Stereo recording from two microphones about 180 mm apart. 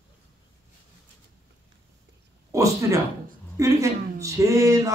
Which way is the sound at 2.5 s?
15° right (ahead or behind).